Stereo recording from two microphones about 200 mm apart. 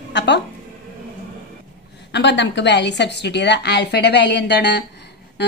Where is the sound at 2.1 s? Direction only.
60° left (ahead or behind).